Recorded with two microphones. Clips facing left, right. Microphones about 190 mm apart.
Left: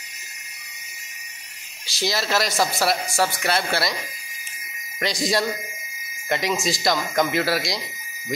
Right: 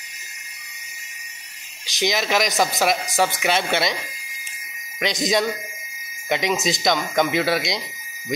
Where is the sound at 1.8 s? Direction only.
20° right (ahead or behind).